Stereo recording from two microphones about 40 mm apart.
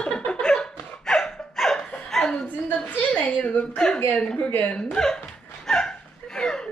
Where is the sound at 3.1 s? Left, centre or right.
Left.